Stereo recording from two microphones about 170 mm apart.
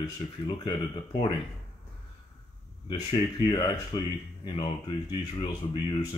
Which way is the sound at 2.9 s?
25° left (ahead or behind).